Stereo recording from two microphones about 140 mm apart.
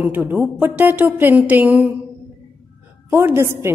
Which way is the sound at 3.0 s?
15° right (ahead or behind).